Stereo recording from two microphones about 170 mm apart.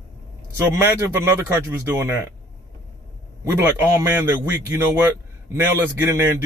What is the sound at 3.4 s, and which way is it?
A man's voice, 15° right (ahead or behind).